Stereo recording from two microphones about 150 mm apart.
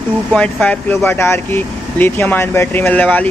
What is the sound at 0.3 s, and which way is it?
Speech, 5° left (ahead or behind).